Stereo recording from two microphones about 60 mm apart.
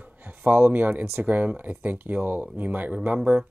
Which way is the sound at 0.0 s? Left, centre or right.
Right.